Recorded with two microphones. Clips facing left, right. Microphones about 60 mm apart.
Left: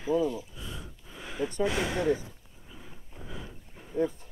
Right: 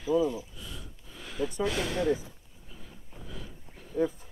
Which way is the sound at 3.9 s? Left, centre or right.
Left.